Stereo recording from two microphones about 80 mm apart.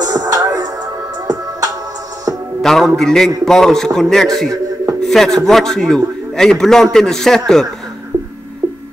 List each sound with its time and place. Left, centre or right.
0.0 s music: right
2.6 s a man's voice: centre
3.0 s a sound: centre
3.4 s a man's voice: centre